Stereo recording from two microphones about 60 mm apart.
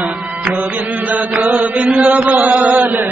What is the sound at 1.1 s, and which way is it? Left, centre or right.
Chant, right.